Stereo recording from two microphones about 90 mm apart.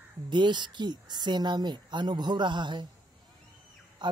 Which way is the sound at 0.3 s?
60° right (ahead or behind).